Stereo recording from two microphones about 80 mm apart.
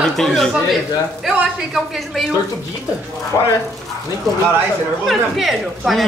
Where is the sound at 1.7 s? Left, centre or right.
Centre.